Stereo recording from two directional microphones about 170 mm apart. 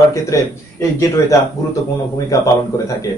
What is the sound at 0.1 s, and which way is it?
A man's voice, 15° left (ahead or behind).